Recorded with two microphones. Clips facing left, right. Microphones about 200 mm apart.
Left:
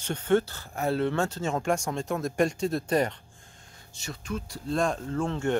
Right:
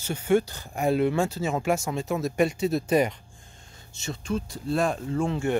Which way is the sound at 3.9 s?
25° right (ahead or behind).